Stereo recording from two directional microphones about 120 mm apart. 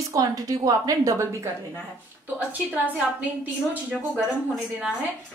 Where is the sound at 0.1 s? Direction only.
30° right (ahead or behind).